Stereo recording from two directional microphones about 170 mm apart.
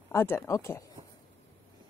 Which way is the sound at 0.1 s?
15° left (ahead or behind).